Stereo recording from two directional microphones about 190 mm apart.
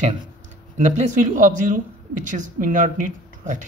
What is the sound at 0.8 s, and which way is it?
Speech, 40° right (ahead or behind).